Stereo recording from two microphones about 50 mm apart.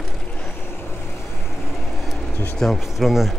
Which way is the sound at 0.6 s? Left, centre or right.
Left.